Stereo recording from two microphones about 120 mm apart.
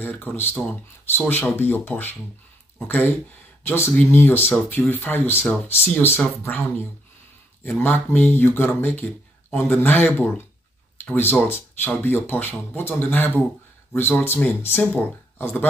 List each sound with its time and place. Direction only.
0.0 s speech: 15° left (ahead or behind)
3.6 s speech: 20° left (ahead or behind)